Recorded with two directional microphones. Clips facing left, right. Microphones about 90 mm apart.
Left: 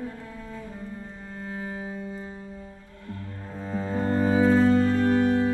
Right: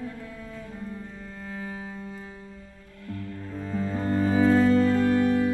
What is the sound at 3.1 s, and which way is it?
Cello, 30° left (ahead or behind).